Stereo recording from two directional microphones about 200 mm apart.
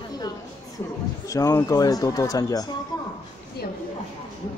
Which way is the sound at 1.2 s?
15° left (ahead or behind).